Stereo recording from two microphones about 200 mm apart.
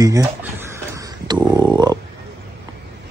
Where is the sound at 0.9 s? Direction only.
20° right (ahead or behind).